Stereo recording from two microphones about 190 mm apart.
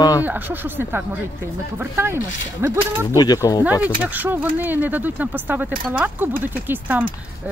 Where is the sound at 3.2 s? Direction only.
20° left (ahead or behind).